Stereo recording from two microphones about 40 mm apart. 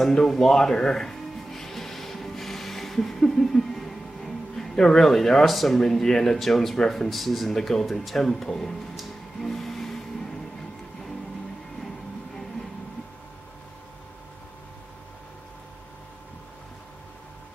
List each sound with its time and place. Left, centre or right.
0.0 s music: centre
4.6 s speech: centre
8.9 s music: centre